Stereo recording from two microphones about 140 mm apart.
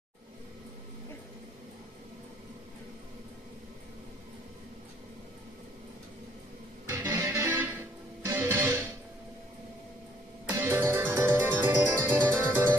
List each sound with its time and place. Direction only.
6.9 s music: 15° right (ahead or behind)
10.6 s music: 20° right (ahead or behind)